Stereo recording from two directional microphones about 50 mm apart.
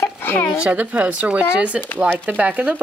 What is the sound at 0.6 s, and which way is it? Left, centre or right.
Speech, right.